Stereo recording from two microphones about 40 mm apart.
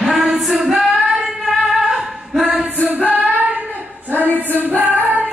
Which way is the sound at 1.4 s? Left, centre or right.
Centre.